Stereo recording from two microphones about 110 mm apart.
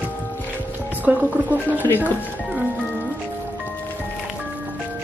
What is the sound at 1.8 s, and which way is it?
Speech, 15° left (ahead or behind).